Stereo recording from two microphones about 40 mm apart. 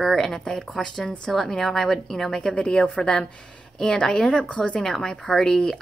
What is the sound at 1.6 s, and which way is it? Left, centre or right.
Speech, centre.